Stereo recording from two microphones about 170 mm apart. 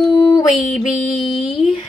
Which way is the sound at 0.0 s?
25° left (ahead or behind).